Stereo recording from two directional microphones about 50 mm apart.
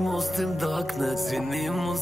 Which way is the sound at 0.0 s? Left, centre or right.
Centre.